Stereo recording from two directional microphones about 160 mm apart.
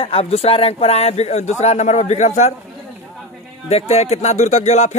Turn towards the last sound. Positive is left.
turn(degrees=45)  # may be behind; listen again after turning